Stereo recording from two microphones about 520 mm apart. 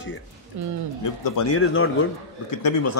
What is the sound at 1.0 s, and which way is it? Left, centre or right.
Speech, left.